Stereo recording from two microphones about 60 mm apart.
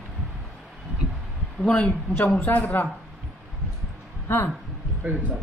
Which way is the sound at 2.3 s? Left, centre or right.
Left.